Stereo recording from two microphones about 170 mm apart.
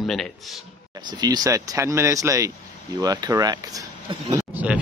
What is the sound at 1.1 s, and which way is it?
Speech, 25° right (ahead or behind).